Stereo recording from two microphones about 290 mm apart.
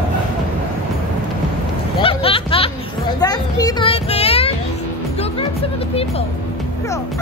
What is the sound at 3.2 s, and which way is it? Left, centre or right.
Children playing, centre.